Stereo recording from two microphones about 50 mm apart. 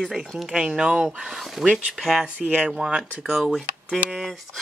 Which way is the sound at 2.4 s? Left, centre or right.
Right.